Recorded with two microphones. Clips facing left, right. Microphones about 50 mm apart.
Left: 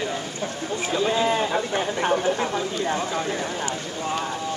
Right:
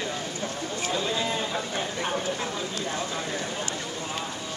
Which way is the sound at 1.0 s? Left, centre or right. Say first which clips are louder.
Left 7 dB; left.